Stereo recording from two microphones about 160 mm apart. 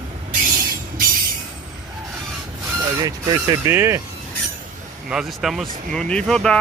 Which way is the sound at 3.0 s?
25° right (ahead or behind).